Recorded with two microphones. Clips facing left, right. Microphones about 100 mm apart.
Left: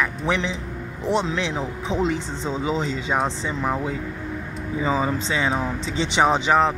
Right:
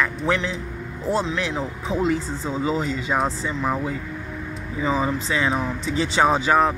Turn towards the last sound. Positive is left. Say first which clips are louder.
# even
turn(degrees=20)  # may be behind; listen again after turning